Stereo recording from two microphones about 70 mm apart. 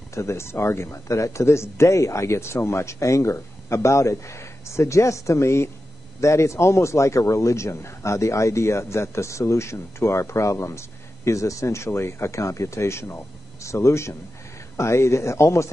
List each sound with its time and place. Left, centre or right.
0.1 s a man's voice: left